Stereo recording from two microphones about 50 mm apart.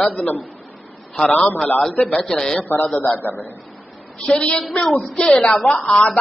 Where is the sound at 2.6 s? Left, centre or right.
Left.